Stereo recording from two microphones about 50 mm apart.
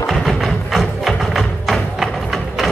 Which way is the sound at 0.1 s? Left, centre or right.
Centre.